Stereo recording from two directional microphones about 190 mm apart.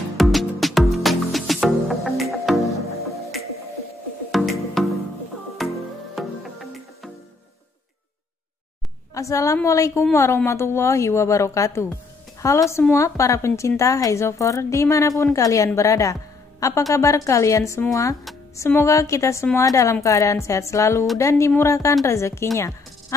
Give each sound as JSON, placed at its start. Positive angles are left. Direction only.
{"t": 0.2, "sound": "music", "side_deg": 0}
{"t": 4.3, "sound": "music", "side_deg": 0}
{"t": 9.1, "sound": "a woman's voice", "side_deg": 15}